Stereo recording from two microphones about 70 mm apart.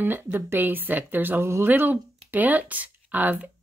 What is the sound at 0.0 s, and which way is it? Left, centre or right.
Speech, right.